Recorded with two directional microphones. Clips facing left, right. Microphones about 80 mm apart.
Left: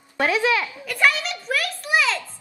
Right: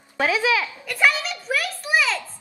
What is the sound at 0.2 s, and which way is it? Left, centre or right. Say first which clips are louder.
A child's voice: even; centre.